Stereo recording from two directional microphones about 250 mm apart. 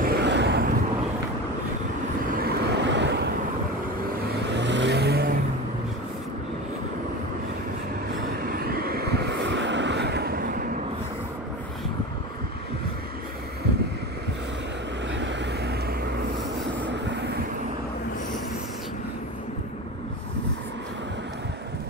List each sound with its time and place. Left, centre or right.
0.0 s vehicle: right
2.2 s vehicle: right
4.4 s vehicle: right
8.5 s vehicle: right